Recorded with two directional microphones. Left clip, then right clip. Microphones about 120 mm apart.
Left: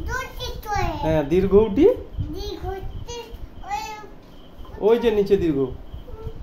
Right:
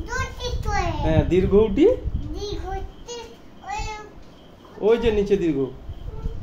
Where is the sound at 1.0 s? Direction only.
25° left (ahead or behind).